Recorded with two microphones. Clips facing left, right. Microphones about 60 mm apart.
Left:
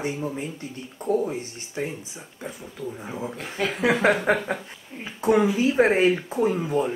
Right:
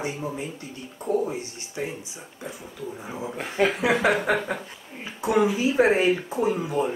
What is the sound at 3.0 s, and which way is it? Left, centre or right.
Speech, centre.